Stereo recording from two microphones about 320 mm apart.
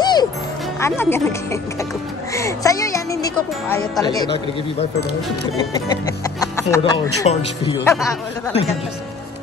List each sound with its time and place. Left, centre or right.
0.0 s music: centre
0.7 s speech: centre
5.9 s speech: centre